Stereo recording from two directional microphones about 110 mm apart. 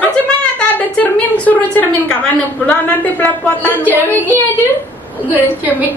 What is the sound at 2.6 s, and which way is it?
A woman's voice, 15° left (ahead or behind).